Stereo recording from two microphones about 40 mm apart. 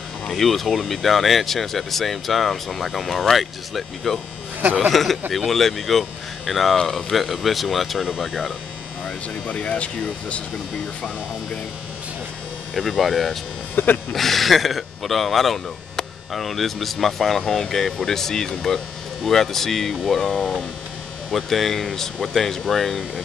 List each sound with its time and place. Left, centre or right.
0.3 s speech: centre
9.5 s speech: left
12.7 s speech: centre
13.8 s speech: left
14.1 s speech: centre